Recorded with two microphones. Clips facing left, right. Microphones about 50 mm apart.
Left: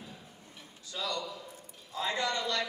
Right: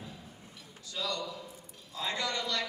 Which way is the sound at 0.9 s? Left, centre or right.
Left.